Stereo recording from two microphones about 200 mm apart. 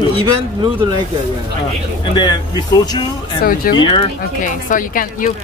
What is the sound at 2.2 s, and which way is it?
Speech, 20° left (ahead or behind).